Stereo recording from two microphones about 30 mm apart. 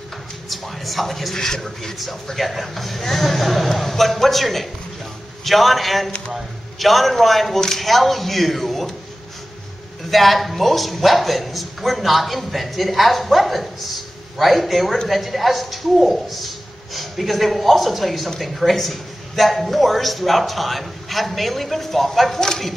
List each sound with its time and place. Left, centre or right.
0.5 s a sound: centre
1.3 s a man's voice: centre
2.3 s a man's voice: centre
10.1 s a man's voice: centre